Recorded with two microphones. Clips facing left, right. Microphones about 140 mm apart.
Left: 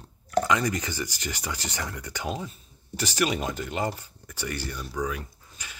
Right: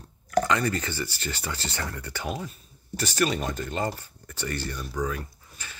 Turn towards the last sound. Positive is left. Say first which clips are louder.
# right 1 dB
turn(degrees=15)  # may be behind; listen again after turning